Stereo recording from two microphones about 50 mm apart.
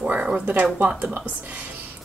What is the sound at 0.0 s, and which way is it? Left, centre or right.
Speech, right.